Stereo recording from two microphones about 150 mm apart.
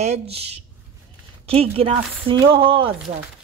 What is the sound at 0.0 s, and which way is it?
Speech, 45° right (ahead or behind).